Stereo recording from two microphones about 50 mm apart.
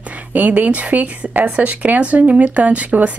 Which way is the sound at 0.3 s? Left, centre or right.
Right.